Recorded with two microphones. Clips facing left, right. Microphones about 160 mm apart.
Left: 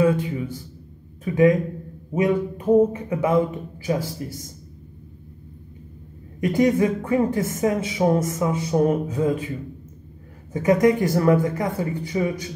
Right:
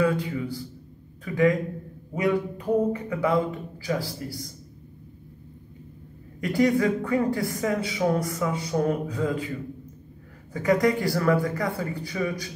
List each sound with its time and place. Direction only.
0.0 s a man's voice: 20° left (ahead or behind)
6.4 s speech: 20° left (ahead or behind)
10.5 s speech: 20° left (ahead or behind)